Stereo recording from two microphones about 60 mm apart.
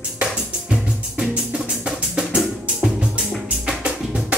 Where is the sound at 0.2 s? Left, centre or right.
Centre.